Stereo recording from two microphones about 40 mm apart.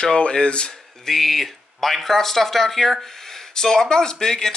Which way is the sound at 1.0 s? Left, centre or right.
Centre.